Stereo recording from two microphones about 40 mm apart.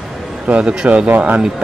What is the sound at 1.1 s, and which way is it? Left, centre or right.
Speech, right.